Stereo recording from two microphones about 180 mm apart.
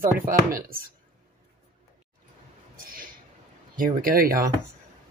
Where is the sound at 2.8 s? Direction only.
50° right (ahead or behind).